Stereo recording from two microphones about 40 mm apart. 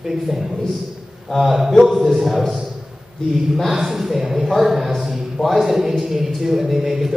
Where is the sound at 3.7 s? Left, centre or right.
Centre.